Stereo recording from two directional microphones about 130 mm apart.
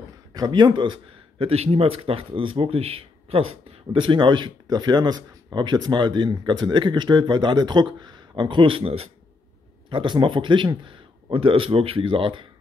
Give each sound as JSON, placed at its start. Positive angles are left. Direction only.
{"t": 0.3, "sound": "speech", "side_deg": -30}
{"t": 1.4, "sound": "speech", "side_deg": -50}
{"t": 9.8, "sound": "speech", "side_deg": -35}